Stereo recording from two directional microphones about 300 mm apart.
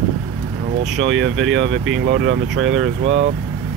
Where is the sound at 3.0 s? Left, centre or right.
Right.